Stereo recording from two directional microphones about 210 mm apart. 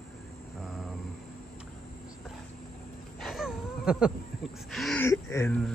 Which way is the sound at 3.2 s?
Centre (ahead or behind).